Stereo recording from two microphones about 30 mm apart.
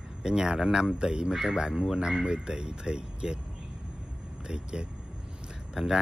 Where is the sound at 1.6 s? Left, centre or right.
Right.